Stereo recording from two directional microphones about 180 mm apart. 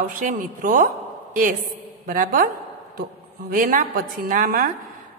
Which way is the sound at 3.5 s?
50° right (ahead or behind).